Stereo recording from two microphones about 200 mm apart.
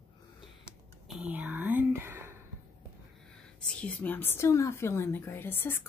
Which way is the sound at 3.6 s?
5° left (ahead or behind).